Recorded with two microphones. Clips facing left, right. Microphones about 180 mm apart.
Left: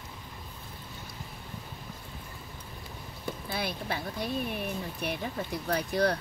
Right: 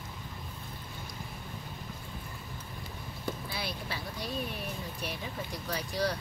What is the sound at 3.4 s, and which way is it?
Speech, 55° left (ahead or behind).